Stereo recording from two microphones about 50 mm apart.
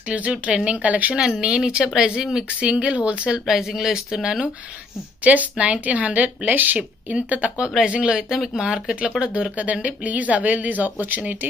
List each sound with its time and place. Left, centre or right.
0.3 s speech: right
1.1 s speech: centre
2.6 s speech: right
3.4 s speech: centre
5.2 s speech: right
6.8 s speech: right
7.6 s speech: centre; by 11.3 s right